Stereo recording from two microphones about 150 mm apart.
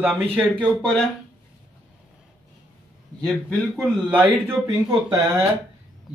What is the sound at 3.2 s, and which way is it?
Speech, 5° left (ahead or behind).